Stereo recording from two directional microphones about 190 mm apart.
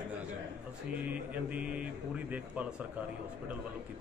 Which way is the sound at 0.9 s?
10° right (ahead or behind).